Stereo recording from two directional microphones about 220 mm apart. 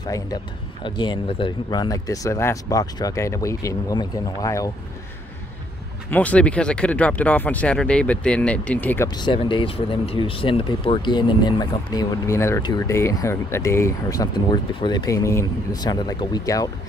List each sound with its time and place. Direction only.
0.0 s speech: 15° left (ahead or behind)
6.0 s speech: 5° left (ahead or behind)